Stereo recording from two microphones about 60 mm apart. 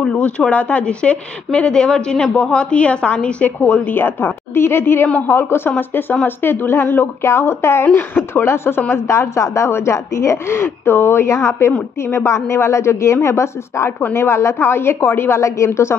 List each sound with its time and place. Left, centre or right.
0.0 s a woman's voice: centre; by 15.9 s left